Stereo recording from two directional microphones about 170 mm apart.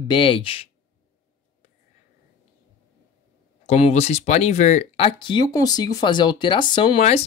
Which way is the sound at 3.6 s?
40° left (ahead or behind).